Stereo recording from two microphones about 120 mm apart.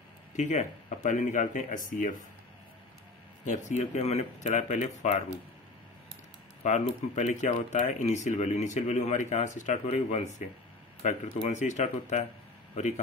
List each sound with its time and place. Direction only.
0.4 s speech: 90° left
3.4 s speech: 85° left; by 5.2 s 70° left (ahead or behind)
6.6 s speech: 80° left
12.7 s a man's voice: 80° left